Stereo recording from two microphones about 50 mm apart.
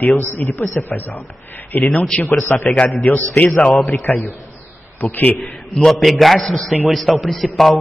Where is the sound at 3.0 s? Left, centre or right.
Left.